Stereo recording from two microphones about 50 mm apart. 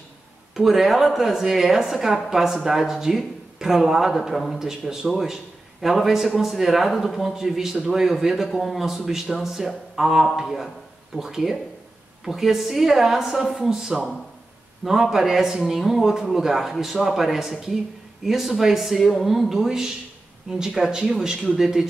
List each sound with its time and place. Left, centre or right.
0.6 s a man's voice: centre